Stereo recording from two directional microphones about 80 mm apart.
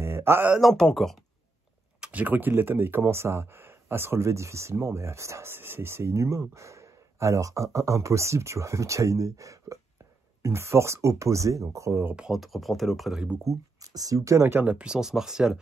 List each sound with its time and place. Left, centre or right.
0.0 s a sound: right
0.6 s speech: centre
2.0 s speech: centre
12.2 s speech: centre
13.4 s speech: right
14.5 s speech: centre